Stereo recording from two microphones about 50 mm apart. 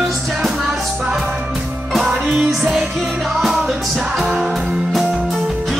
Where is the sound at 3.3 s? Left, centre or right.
Centre.